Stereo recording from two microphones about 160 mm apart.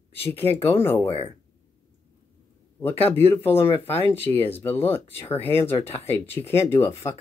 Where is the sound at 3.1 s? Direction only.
15° left (ahead or behind).